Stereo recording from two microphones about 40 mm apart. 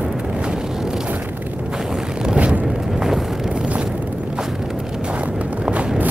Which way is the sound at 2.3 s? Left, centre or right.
Right.